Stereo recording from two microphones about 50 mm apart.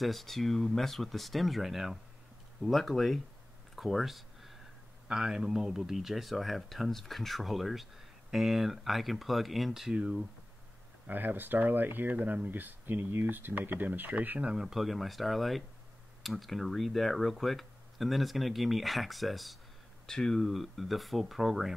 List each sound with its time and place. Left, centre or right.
0.0 s speech: centre
3.7 s a sound: centre
5.0 s speech: centre
9.9 s speech: right
11.1 s speech: right
14.4 s speech: centre
14.7 s speech: centre
20.1 s speech: centre